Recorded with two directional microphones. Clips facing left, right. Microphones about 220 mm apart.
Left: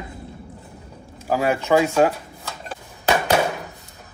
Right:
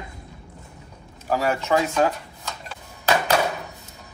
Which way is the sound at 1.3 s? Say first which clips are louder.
Left 3 dB; 10° left (ahead or behind).